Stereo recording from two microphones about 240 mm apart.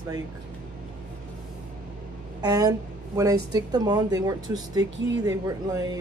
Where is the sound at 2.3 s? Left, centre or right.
Centre.